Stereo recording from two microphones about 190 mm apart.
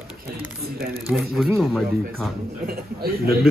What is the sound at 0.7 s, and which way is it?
Speech, 55° right (ahead or behind).